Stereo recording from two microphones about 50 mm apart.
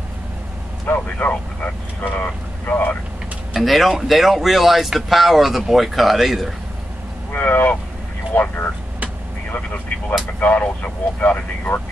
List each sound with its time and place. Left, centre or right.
0.9 s speech: left
3.5 s speech: centre
7.3 s speech: left
10.4 s speech: left